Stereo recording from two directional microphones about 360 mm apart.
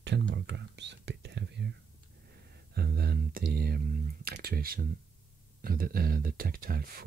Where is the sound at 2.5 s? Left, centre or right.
Right.